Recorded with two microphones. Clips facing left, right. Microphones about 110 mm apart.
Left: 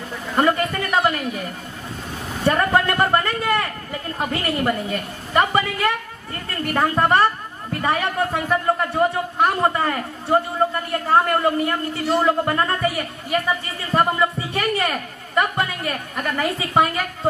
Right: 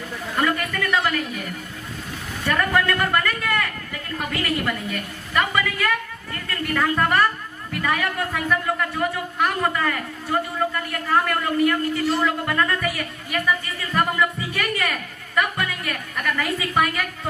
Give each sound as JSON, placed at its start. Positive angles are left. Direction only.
{"t": 0.4, "sound": "a woman's voice", "side_deg": 30}
{"t": 2.4, "sound": "a sound", "side_deg": 30}
{"t": 7.7, "sound": "a woman's voice", "side_deg": 30}